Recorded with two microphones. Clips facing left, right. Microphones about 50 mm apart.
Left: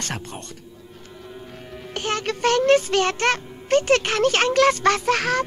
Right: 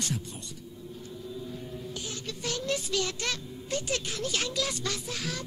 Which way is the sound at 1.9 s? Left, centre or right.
Left.